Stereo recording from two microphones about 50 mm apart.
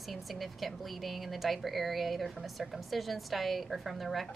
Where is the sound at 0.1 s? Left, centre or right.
Centre.